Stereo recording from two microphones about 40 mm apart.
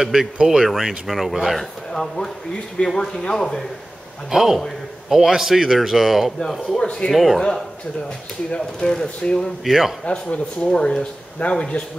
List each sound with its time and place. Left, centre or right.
0.0 s a man's voice: centre
0.7 s speech: centre
2.0 s speech: centre
4.3 s a man's voice: centre
6.8 s speech: centre
7.1 s speech: centre
8.5 s a man's voice: centre
9.7 s a man's voice: centre
10.0 s speech: left